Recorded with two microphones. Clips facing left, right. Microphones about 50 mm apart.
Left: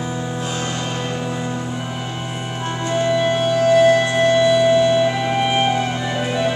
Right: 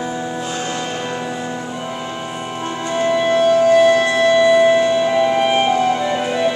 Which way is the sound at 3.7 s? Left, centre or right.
Centre.